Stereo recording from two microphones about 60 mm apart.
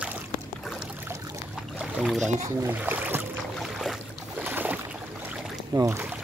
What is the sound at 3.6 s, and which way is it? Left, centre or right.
Boat, centre.